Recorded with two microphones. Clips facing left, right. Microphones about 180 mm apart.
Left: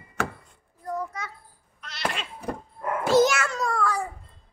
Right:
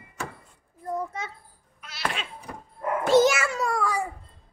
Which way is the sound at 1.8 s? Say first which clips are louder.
Left 1 dB; 5° right (ahead or behind).